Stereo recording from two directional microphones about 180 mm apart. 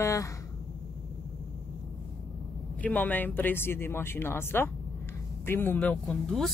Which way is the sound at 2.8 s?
10° left (ahead or behind).